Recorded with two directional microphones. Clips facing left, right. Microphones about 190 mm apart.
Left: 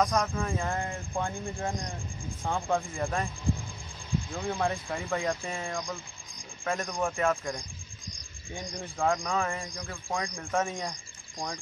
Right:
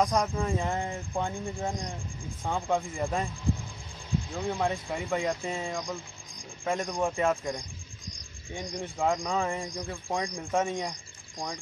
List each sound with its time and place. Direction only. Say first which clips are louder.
0.0 s speech: right 1 dB; 20° right (ahead or behind)
1.1 s speech: right 1 dB; 5° right (ahead or behind)
4.3 s speech: right 1 dB; 5° right (ahead or behind); by 7.6 s 20° right (ahead or behind)
8.9 s speech: even; 15° right (ahead or behind)